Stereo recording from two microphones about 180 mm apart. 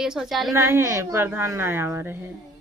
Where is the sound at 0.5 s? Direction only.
15° right (ahead or behind).